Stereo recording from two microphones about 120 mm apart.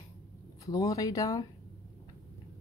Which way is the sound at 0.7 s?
30° left (ahead or behind).